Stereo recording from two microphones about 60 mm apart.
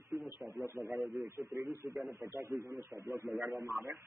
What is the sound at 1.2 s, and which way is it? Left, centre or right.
A man's voice, right.